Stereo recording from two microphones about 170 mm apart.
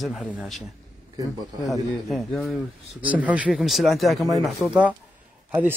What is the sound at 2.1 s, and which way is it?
A man's voice, centre (ahead or behind).